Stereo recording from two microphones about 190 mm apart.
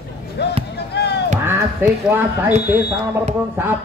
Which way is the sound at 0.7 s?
60° left (ahead or behind).